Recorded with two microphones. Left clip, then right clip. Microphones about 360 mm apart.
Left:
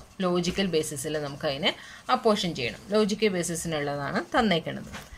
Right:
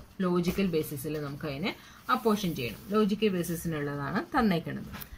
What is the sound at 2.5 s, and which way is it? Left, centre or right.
Speech, left.